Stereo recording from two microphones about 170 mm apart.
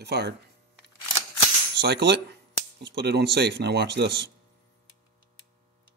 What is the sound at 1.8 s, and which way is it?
Speech, 85° right.